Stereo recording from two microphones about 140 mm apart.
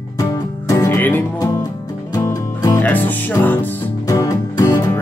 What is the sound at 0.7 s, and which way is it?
Music, 20° left (ahead or behind).